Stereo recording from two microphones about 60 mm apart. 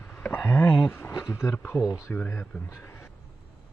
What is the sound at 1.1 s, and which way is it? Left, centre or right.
Speech, left.